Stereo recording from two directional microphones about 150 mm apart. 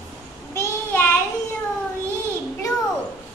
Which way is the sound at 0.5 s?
15° left (ahead or behind).